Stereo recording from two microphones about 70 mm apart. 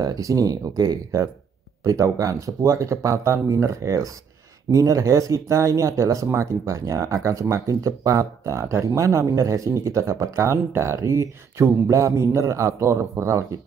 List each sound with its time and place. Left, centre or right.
0.0 s speech: right
1.8 s speech: right